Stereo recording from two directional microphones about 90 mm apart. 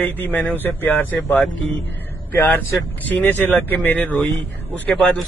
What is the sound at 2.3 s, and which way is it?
A man's voice, 25° left (ahead or behind).